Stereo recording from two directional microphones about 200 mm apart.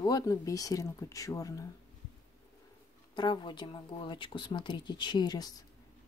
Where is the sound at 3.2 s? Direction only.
20° left (ahead or behind).